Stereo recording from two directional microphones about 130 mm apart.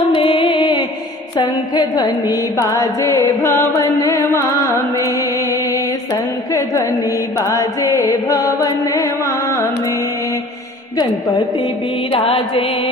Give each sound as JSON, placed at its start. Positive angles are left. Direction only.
{"t": 0.1, "sound": "music", "side_deg": 40}
{"t": 1.3, "sound": "mantra", "side_deg": 30}
{"t": 2.3, "sound": "music", "side_deg": 25}
{"t": 11.0, "sound": "mantra", "side_deg": 35}
{"t": 12.1, "sound": "music", "side_deg": 45}